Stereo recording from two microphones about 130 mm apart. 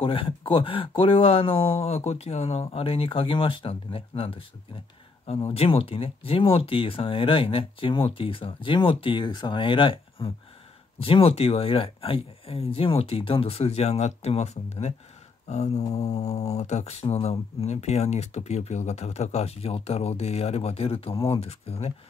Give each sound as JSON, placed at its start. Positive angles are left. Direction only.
{"t": 0.0, "sound": "speech", "side_deg": 45}
{"t": 15.4, "sound": "mantra", "side_deg": 55}